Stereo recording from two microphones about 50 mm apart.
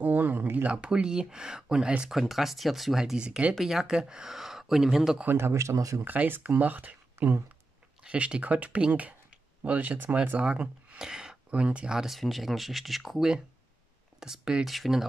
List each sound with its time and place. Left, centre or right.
0.0 s a sound: right
0.7 s speech: right
2.0 s speech: centre
3.2 s speech: right
3.5 s speech: centre
5.2 s speech: right
5.5 s speech: right
6.0 s speech: right
10.4 s speech: right
12.0 s speech: centre
14.2 s speech: centre